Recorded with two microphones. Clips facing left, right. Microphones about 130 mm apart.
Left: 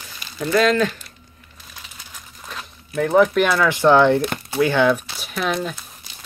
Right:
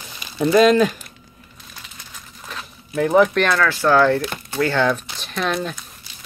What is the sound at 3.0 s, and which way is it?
Speech, centre (ahead or behind).